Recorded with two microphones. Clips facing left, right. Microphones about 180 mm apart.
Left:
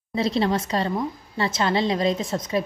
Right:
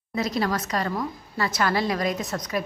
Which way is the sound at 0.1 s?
30° left (ahead or behind).